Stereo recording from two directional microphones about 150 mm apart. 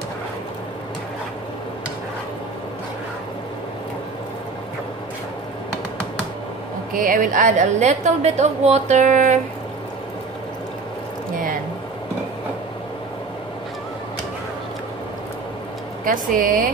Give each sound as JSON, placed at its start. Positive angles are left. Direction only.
{"t": 6.9, "sound": "a woman's voice", "side_deg": -65}
{"t": 16.1, "sound": "speech", "side_deg": -65}